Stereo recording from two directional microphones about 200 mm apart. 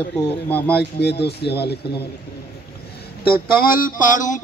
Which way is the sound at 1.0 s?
55° left (ahead or behind).